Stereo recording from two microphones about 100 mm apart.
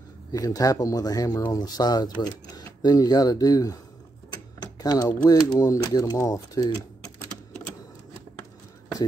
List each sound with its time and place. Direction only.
0.3 s speech: 35° left (ahead or behind)